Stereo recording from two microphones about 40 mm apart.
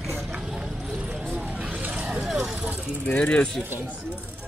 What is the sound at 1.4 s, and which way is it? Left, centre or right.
Vehicle, right.